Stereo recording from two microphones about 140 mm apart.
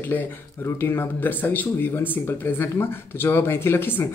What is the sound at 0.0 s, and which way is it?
Speech, 15° left (ahead or behind).